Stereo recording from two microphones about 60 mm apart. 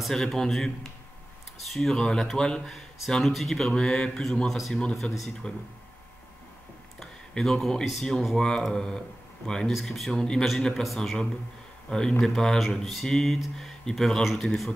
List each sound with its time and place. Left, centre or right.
0.0 s speech: centre
1.7 s speech: centre
5.0 s speech: centre
7.0 s a sound: centre
7.8 s speech: centre
8.4 s speech: centre
9.7 s speech: centre